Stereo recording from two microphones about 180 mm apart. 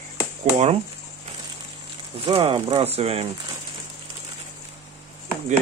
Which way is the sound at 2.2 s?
30° right (ahead or behind).